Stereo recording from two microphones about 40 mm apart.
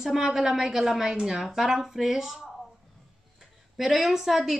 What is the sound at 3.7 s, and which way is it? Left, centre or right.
Speech, centre.